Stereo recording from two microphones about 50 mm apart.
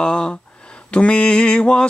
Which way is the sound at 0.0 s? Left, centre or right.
Centre.